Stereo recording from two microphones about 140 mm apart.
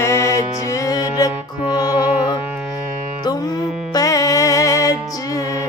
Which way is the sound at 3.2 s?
30° left (ahead or behind).